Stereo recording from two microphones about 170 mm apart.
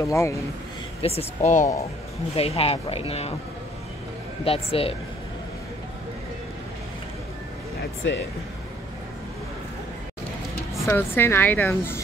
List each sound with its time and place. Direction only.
0.0 s speech: 20° left (ahead or behind)
1.0 s speech: 40° left (ahead or behind)
4.5 s speech: 35° left (ahead or behind)
8.0 s speech: 90° left
10.9 s speech: 15° left (ahead or behind)